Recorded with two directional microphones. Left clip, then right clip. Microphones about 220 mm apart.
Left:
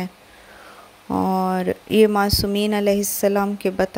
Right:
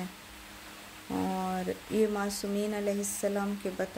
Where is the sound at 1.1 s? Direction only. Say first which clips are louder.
Left 12 dB; 40° left (ahead or behind).